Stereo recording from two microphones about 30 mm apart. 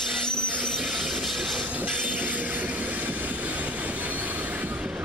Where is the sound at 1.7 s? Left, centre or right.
Right.